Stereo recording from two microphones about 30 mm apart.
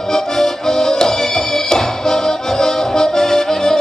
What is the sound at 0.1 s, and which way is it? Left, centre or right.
Music, centre.